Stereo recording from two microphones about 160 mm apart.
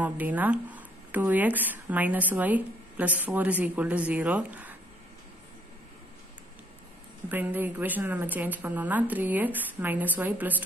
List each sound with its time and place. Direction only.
0.0 s speech: 10° right (ahead or behind)
7.2 s speech: 10° right (ahead or behind)